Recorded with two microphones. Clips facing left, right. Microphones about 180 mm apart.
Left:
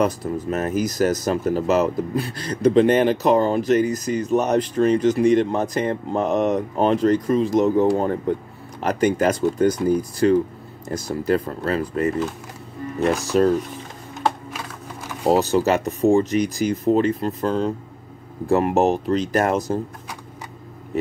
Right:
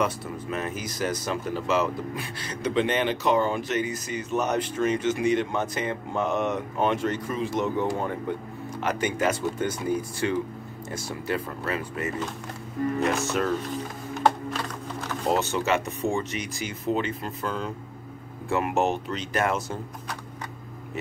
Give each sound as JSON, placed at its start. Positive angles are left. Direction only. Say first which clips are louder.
{"t": 0.0, "sound": "speech", "louder": "left 6 dB", "side_deg": 40}
{"t": 13.1, "sound": "speech", "louder": "left 8 dB", "side_deg": 35}
{"t": 14.5, "sound": "a sound", "louder": "right 2 dB", "side_deg": 10}
{"t": 15.2, "sound": "speech", "louder": "left 8 dB", "side_deg": 35}
{"t": 20.9, "sound": "speech", "louder": "left 10 dB", "side_deg": 35}